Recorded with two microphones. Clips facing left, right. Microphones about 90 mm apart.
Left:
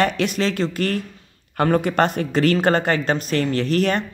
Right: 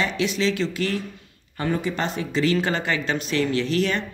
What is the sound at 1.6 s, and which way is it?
Speech, 60° left (ahead or behind).